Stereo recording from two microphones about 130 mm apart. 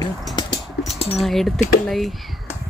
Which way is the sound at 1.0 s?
50° left (ahead or behind).